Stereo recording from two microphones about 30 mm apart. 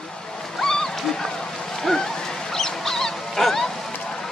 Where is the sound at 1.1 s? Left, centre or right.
Centre.